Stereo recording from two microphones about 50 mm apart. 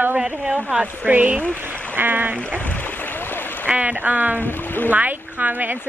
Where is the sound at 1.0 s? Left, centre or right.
Right.